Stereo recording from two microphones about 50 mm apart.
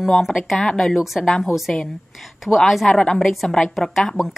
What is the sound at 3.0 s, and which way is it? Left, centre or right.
A woman's voice, centre.